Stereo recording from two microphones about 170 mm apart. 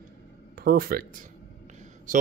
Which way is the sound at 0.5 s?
60° right (ahead or behind).